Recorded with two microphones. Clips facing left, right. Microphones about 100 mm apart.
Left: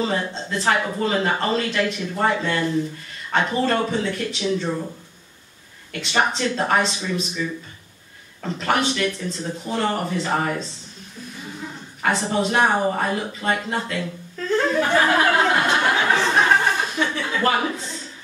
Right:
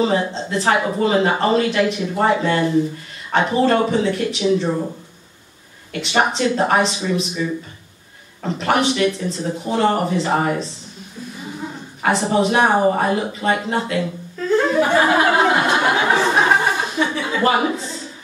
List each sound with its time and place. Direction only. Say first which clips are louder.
0.0 s speech: right 5 dB; 15° right (ahead or behind)
5.9 s speech: right 3 dB; 15° right (ahead or behind)
12.0 s speech: right 4 dB; 15° right (ahead or behind)
14.6 s a sound: right 2 dB; 15° right (ahead or behind)